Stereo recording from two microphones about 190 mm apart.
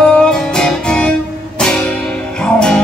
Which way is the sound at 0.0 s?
5° left (ahead or behind).